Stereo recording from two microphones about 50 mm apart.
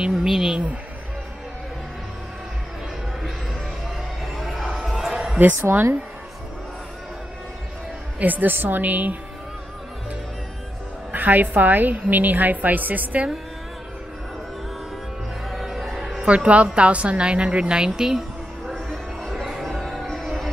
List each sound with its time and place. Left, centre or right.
0.2 s a sound: centre
4.2 s a sound: centre
5.6 s speech: right
8.2 s a woman's voice: right
11.1 s a woman's voice: right
15.5 s music: centre
16.3 s a woman's voice: right
18.7 s crowd: centre
19.6 s music: centre